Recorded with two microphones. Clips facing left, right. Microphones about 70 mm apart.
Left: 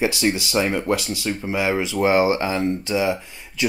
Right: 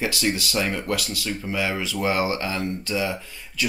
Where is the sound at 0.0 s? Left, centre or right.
Left.